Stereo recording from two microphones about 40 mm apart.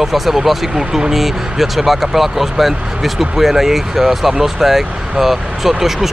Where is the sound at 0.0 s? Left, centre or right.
Centre.